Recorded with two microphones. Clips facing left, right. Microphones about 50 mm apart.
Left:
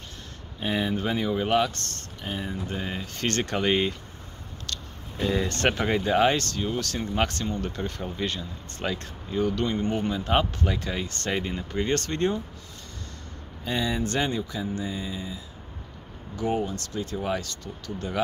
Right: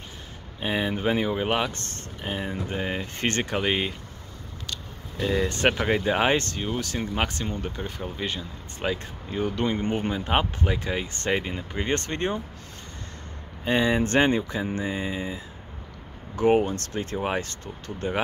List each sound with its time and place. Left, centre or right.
0.6 s speech: centre
3.4 s speech: centre
5.2 s speech: centre
13.7 s speech: right